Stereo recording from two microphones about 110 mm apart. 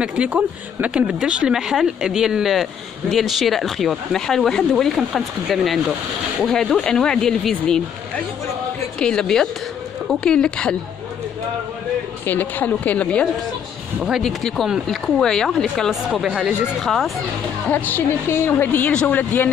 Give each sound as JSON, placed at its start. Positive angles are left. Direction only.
{"t": 0.0, "sound": "speech", "side_deg": -10}
{"t": 9.0, "sound": "a woman's voice", "side_deg": 5}
{"t": 12.3, "sound": "a woman's voice", "side_deg": 15}
{"t": 14.0, "sound": "speech", "side_deg": 0}
{"t": 17.6, "sound": "a woman's voice", "side_deg": 15}